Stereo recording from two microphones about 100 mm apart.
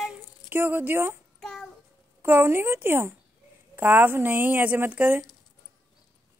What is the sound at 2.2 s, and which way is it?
Speech, 25° right (ahead or behind).